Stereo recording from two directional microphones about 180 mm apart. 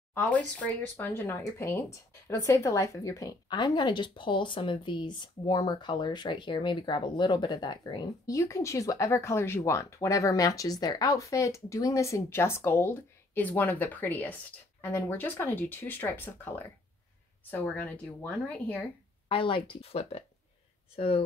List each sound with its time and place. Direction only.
0.1 s speech: 10° left (ahead or behind)
19.2 s speech: 30° left (ahead or behind)